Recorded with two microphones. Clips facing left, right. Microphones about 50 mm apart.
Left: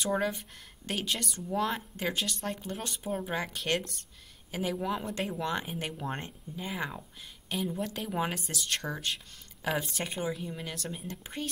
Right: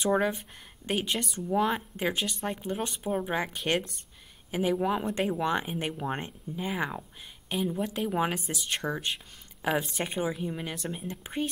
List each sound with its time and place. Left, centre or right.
0.0 s speech: centre